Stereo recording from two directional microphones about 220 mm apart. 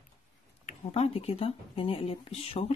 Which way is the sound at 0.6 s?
30° left (ahead or behind).